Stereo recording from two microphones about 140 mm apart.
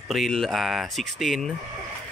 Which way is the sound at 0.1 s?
Centre (ahead or behind).